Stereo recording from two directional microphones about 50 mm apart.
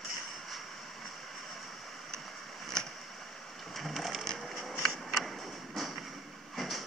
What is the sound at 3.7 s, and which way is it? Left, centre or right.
Sewing machine, centre.